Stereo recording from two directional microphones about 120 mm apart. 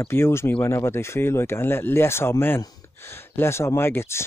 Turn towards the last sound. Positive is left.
turn(degrees=20)  # may be behind; listen again after turning